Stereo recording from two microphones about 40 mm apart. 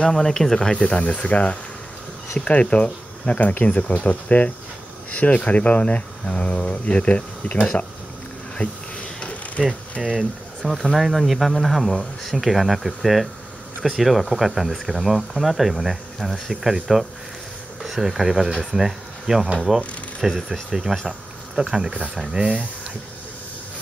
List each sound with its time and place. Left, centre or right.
0.1 s speech: centre
0.7 s speech: left
8.5 s a sound: left
9.6 s speech: centre
10.0 s speech: centre
17.8 s speech: centre
20.2 s speech: centre
21.5 s speech: right